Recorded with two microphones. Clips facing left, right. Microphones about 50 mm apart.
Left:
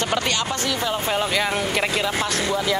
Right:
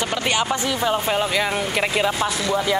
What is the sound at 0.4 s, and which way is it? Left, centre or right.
Speech, centre.